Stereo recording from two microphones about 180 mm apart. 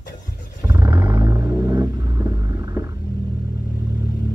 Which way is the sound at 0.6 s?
15° right (ahead or behind).